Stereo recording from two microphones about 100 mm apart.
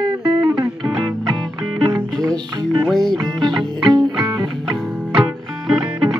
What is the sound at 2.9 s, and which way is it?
Music, 5° left (ahead or behind).